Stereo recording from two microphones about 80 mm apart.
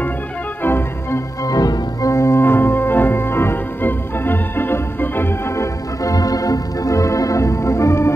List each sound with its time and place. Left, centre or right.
0.7 s organ: left
1.4 s organ: left
6.0 s organ: left